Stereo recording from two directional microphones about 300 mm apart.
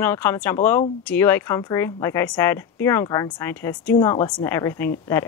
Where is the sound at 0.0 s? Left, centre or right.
Centre.